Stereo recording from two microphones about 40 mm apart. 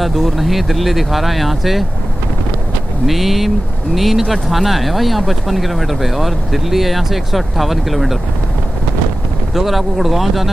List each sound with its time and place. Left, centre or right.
0.0 s speech: centre
3.1 s speech: centre
9.5 s speech: centre